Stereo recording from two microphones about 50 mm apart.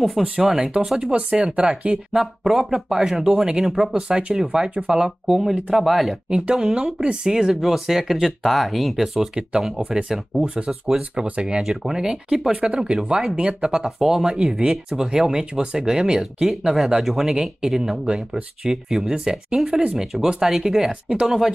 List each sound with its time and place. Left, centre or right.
0.4 s speech: centre
1.1 s speech: right
2.1 s speech: centre
6.3 s speech: centre
6.6 s speech: centre
7.0 s speech: centre
7.6 s speech: centre
9.8 s speech: centre
11.0 s speech: right
11.7 s speech: centre
12.5 s speech: centre